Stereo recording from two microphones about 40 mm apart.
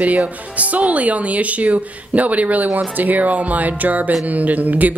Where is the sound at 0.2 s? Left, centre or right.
Right.